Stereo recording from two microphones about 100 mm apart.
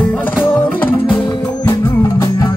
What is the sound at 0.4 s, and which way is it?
Music, 20° left (ahead or behind).